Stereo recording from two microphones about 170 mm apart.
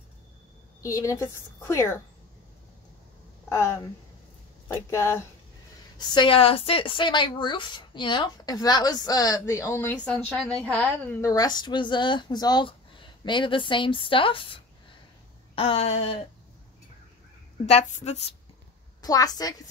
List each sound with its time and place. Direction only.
0.7 s a woman's voice: 20° left (ahead or behind)
3.4 s speech: 15° left (ahead or behind)
4.8 s a woman's voice: 15° left (ahead or behind)
5.9 s a woman's voice: 30° left (ahead or behind)
15.5 s a sound: 35° left (ahead or behind)
17.6 s a sound: 40° left (ahead or behind)
18.9 s a woman's voice: 20° left (ahead or behind)